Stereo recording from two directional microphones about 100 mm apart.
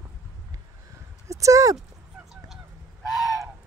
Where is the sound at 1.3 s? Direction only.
30° right (ahead or behind).